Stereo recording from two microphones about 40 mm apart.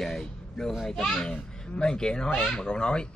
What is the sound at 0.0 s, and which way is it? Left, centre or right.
Vehicle, centre.